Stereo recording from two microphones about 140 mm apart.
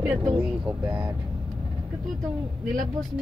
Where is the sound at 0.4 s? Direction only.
15° right (ahead or behind).